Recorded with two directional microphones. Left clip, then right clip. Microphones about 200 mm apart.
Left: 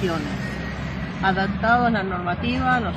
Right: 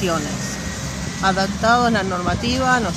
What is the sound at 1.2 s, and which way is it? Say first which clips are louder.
Speech: right 3 dB; 45° right (ahead or behind).